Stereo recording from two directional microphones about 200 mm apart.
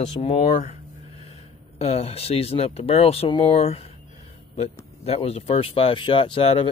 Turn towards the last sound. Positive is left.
turn(degrees=30)  # may be behind; listen again after turning